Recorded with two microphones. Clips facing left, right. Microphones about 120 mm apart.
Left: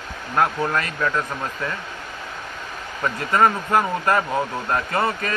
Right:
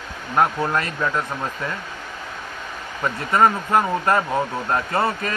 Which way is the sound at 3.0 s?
20° right (ahead or behind).